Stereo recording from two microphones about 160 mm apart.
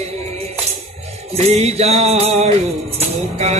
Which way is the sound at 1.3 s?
40° right (ahead or behind).